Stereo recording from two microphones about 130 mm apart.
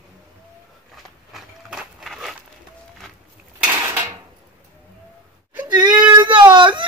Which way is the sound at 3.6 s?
15° right (ahead or behind).